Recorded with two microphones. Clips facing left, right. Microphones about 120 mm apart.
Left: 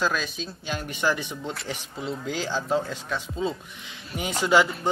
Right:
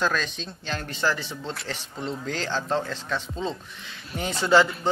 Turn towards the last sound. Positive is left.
turn(degrees=10)  # may be behind; listen again after turning